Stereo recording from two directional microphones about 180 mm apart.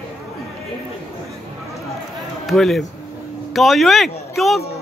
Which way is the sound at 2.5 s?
Centre (ahead or behind).